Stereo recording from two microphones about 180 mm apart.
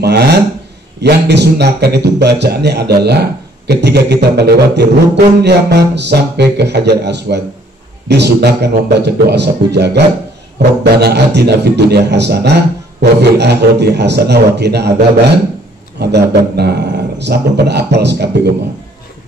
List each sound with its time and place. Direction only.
0.0 s a man's voice: 65° right (ahead or behind)
3.6 s didgeridoo: 65° right (ahead or behind)
16.0 s a man's voice: 65° right (ahead or behind)